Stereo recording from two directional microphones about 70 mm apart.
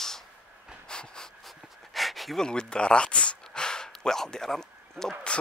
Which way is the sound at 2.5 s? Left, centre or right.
Centre.